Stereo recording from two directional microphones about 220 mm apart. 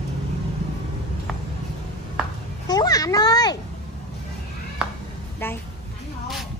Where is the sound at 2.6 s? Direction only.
15° left (ahead or behind).